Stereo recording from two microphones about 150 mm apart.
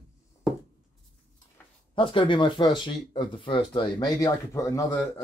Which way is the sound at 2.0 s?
35° left (ahead or behind).